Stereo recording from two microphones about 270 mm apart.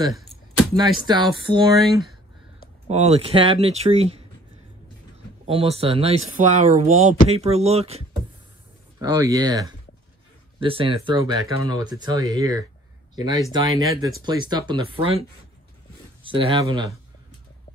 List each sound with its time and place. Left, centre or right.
0.7 s speech: centre
2.9 s speech: right
5.5 s speech: right
9.0 s speech: centre
16.3 s speech: centre